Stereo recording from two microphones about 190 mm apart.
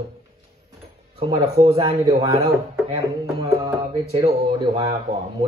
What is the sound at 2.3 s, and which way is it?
Speech, 20° right (ahead or behind).